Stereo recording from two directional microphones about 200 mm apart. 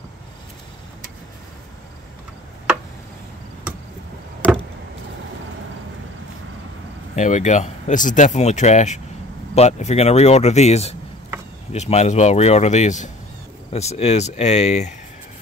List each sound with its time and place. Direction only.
4.4 s vehicle: 5° left (ahead or behind)
7.2 s speech: 35° left (ahead or behind)